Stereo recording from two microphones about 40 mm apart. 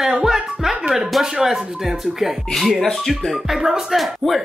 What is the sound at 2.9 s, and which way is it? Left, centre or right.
Speech, centre.